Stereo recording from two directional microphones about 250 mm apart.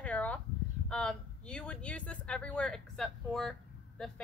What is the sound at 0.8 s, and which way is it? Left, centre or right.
Speech, centre.